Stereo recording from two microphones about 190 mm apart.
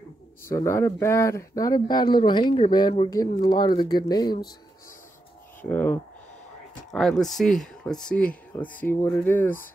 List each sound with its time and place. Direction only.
0.5 s speech: 15° left (ahead or behind)
5.6 s speech: 10° left (ahead or behind)